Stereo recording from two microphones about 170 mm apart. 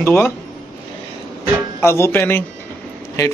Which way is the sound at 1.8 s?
15° left (ahead or behind).